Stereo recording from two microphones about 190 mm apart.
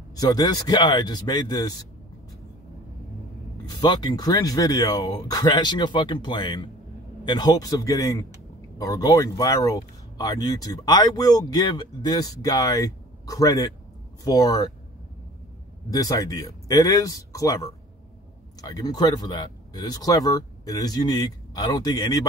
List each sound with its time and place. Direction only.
0.1 s speech: 20° left (ahead or behind)
3.6 s speech: 25° left (ahead or behind)
15.9 s speech: 20° left (ahead or behind)